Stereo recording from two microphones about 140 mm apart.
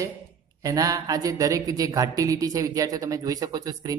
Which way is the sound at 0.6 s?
25° right (ahead or behind).